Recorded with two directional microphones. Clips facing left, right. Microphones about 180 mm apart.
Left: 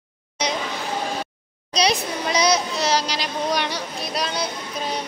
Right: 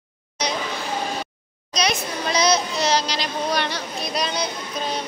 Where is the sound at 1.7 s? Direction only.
30° left (ahead or behind).